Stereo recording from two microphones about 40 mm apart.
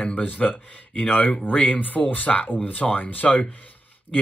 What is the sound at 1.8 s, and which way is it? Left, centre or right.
Speech, left.